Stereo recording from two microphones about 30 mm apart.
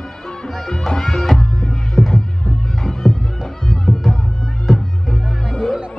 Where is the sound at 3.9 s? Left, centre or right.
Centre.